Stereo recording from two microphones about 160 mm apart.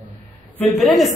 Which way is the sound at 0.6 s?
Centre (ahead or behind).